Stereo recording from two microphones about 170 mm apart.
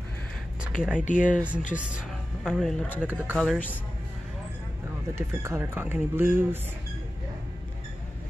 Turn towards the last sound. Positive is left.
turn(degrees=-15)  # may be behind; listen again after turning